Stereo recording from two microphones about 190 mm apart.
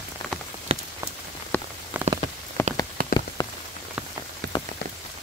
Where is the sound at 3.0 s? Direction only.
50° right (ahead or behind).